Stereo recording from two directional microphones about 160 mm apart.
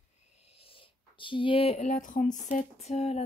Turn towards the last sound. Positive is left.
turn(degrees=40)  # may be behind; listen again after turning